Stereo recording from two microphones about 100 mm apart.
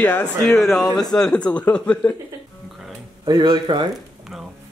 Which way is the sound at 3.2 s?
45° right (ahead or behind).